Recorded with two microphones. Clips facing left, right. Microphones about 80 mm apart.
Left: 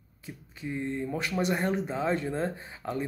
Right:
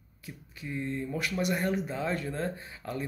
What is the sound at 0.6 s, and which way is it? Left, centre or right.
Speech, left.